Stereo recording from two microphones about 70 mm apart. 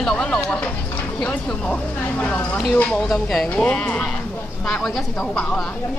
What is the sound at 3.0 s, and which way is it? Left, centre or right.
Speech, centre.